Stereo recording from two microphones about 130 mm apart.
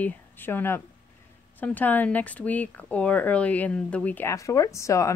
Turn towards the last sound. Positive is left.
turn(degrees=25)  # may be behind; listen again after turning